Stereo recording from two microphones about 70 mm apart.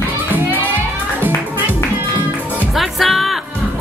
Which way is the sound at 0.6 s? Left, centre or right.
Right.